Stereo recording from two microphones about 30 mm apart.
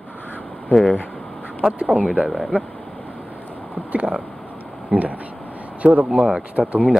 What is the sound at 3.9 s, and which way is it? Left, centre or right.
Speech, right.